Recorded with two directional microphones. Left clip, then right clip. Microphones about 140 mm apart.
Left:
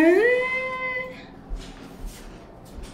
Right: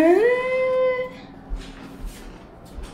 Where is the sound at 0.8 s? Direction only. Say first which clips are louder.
Right 7 dB; 15° right (ahead or behind).